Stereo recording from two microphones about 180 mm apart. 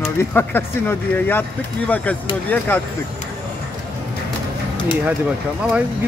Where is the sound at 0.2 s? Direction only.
10° left (ahead or behind).